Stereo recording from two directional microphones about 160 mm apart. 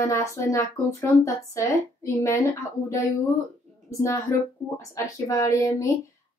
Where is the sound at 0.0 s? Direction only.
20° left (ahead or behind).